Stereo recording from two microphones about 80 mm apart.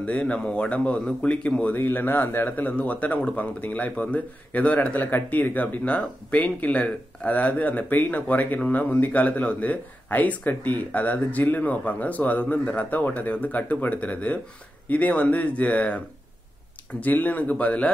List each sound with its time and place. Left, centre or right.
0.0 s speech: centre
1.8 s a man's voice: left
17.0 s speech: left